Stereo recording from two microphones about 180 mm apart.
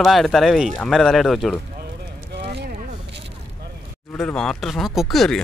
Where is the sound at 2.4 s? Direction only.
65° right (ahead or behind).